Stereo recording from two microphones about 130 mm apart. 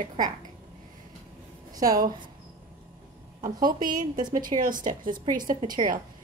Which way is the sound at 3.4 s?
90° right.